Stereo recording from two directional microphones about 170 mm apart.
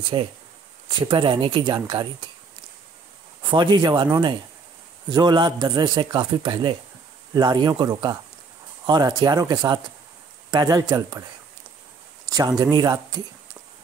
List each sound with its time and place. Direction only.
0.1 s a man's voice: 25° right (ahead or behind)
3.4 s a man's voice: 25° right (ahead or behind)
12.3 s a man's voice: 20° right (ahead or behind)